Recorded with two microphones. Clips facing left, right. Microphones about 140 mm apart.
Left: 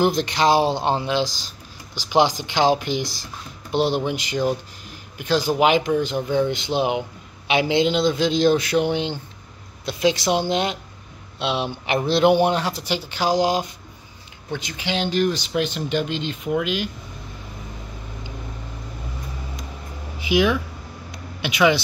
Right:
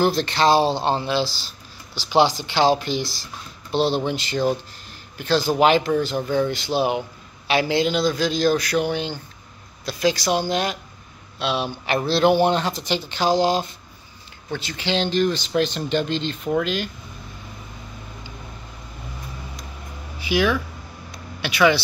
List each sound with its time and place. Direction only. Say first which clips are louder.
0.0 s a man's voice: even; 15° left (ahead or behind)
20.2 s speech: left 1 dB; 20° left (ahead or behind)